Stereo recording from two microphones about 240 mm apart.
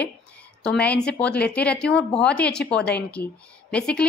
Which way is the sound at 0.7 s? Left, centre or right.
Centre.